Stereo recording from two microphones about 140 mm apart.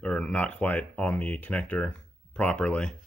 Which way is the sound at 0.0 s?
5° left (ahead or behind).